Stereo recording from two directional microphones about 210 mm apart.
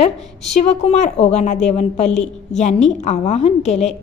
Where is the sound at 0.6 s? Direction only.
30° left (ahead or behind).